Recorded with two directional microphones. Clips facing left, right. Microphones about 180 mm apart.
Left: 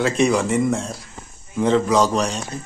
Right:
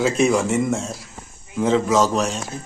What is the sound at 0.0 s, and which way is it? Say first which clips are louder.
A man's voice: even; centre (ahead or behind).